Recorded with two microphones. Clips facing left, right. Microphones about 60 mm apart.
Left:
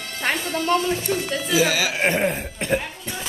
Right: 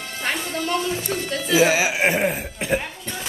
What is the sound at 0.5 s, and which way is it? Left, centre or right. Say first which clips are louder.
Speech: left 5 dB; left.